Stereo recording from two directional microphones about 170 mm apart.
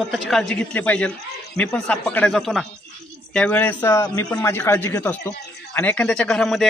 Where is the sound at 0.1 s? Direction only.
5° left (ahead or behind).